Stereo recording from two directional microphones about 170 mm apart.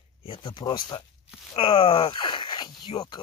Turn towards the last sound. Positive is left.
turn(degrees=30)  # may be behind; listen again after turning